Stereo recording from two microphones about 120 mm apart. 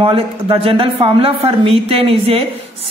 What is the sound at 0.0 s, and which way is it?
A woman's voice, 50° right (ahead or behind).